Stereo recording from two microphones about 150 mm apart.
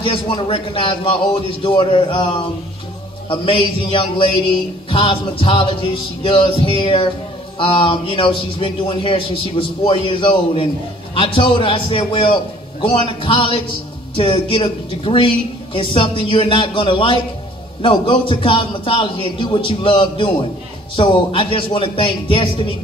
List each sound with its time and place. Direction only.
0.0 s a man's voice: 35° left (ahead or behind)